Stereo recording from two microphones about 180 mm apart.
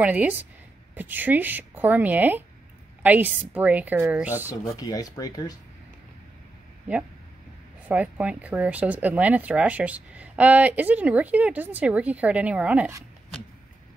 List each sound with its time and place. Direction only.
0.0 s speech: 10° right (ahead or behind)
4.5 s speech: 20° left (ahead or behind)
7.9 s speech: 5° right (ahead or behind)